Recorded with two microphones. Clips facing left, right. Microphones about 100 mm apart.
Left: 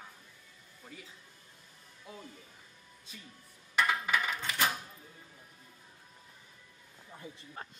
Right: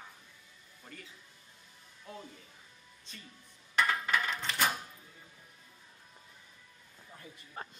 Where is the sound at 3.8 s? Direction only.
5° left (ahead or behind).